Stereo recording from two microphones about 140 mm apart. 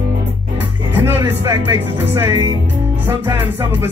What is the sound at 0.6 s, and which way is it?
Music, 15° right (ahead or behind).